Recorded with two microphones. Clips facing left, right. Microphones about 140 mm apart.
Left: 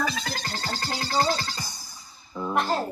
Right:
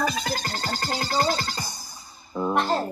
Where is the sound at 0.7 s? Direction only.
45° right (ahead or behind).